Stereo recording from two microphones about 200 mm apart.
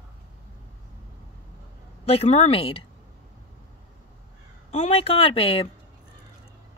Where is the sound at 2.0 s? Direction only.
30° left (ahead or behind).